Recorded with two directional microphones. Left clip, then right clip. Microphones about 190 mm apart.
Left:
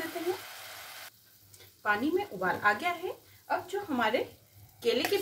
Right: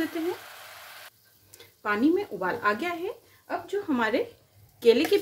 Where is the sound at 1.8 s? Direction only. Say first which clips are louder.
Right 4 dB; 50° right (ahead or behind).